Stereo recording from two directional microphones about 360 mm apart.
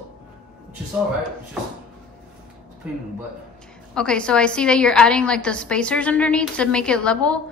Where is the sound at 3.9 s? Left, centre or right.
Centre.